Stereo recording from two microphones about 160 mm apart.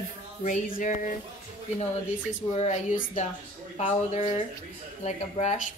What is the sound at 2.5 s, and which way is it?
Speech, 50° left (ahead or behind).